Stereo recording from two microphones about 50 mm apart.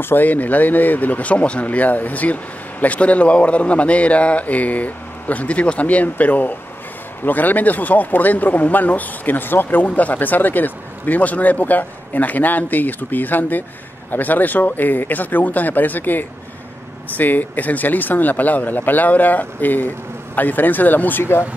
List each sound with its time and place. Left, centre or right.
0.0 s speech: left